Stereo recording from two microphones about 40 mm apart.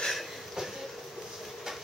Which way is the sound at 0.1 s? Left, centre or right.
Centre.